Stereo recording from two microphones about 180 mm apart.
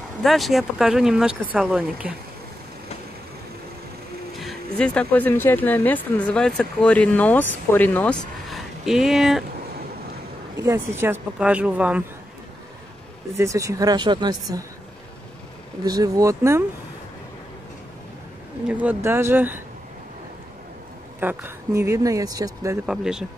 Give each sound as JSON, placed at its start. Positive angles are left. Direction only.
{"t": 0.2, "sound": "speech", "side_deg": 0}
{"t": 4.4, "sound": "speech", "side_deg": 5}
{"t": 10.5, "sound": "speech", "side_deg": -15}
{"t": 13.4, "sound": "speech", "side_deg": -20}
{"t": 15.8, "sound": "speech", "side_deg": -20}
{"t": 18.7, "sound": "speech", "side_deg": -10}
{"t": 21.2, "sound": "speech", "side_deg": -10}
{"t": 22.8, "sound": "speech", "side_deg": -5}